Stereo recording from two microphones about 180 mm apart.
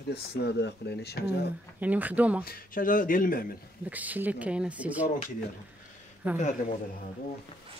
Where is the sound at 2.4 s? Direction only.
55° left (ahead or behind).